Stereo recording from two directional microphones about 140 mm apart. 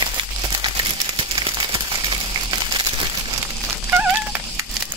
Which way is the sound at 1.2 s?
35° right (ahead or behind).